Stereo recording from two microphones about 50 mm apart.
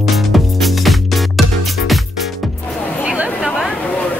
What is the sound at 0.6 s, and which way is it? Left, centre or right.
Music, centre.